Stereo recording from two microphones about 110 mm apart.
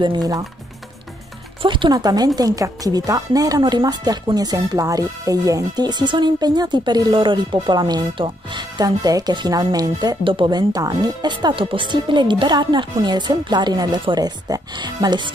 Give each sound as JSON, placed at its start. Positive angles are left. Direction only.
{"t": 0.0, "sound": "speech", "side_deg": -40}
{"t": 1.6, "sound": "speech", "side_deg": -50}
{"t": 10.2, "sound": "speech", "side_deg": -50}